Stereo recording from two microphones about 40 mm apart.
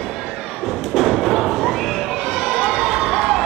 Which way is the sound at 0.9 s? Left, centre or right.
Centre.